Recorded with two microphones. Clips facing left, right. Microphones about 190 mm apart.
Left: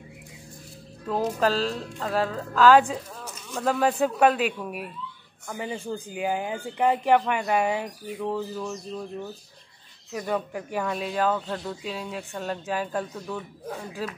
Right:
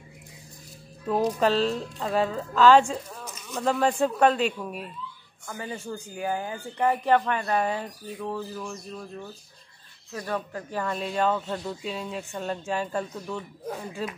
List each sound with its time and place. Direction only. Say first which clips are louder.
1.2 s speech: right 1 dB; centre (ahead or behind); by 9.0 s 20° left (ahead or behind)
10.1 s speech: left 3 dB; 15° left (ahead or behind)